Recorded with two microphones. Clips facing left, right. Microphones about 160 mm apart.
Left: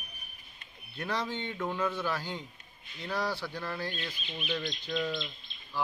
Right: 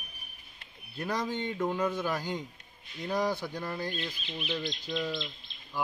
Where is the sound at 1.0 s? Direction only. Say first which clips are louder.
Right 2 dB; 15° right (ahead or behind).